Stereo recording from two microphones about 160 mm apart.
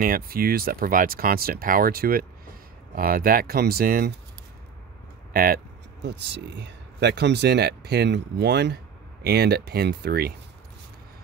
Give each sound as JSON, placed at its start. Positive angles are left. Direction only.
{"t": 0.0, "sound": "speech", "side_deg": -65}
{"t": 5.3, "sound": "speech", "side_deg": -60}
{"t": 6.0, "sound": "speech", "side_deg": -90}